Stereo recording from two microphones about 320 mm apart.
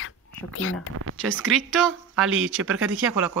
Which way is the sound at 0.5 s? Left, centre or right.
Left.